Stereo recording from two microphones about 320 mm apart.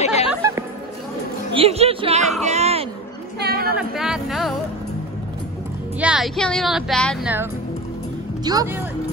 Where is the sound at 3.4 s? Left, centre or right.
Right.